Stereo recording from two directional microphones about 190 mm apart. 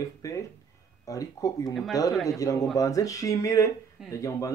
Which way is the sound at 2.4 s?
15° left (ahead or behind).